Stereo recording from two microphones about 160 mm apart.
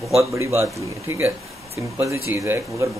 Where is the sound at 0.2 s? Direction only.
20° right (ahead or behind).